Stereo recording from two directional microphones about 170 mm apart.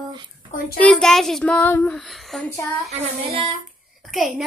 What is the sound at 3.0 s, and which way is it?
Child singing, 35° right (ahead or behind).